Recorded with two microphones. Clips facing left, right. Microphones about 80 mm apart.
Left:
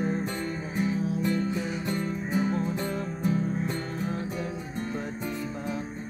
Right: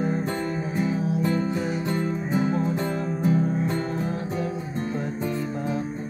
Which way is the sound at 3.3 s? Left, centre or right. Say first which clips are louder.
Right 5 dB; right.